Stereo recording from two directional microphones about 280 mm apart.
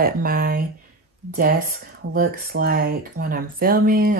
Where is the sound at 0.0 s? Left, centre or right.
Right.